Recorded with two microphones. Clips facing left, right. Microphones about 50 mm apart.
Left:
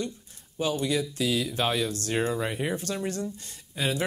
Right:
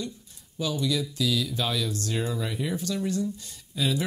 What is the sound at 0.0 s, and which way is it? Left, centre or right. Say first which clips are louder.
Speech: left 2 dB; left.